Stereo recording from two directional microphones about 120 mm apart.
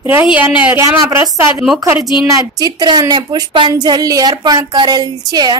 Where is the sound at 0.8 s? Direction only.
25° right (ahead or behind).